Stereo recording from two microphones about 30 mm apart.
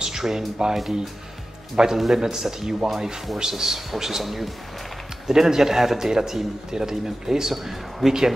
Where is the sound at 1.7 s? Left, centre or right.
Right; by 4.5 s centre.